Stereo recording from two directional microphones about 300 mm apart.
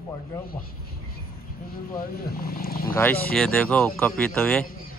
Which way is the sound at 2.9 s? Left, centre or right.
Centre.